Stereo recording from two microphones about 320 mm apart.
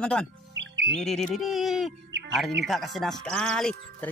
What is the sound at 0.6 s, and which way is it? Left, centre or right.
Music, right.